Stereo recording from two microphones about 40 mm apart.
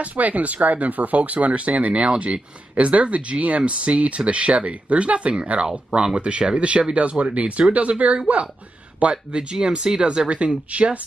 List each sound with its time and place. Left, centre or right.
0.0 s speech: right